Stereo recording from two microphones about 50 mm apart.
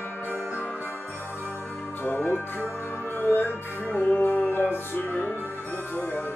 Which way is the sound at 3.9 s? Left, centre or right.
Left.